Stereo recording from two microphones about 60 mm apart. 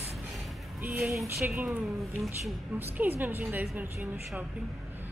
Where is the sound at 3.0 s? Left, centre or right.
Right.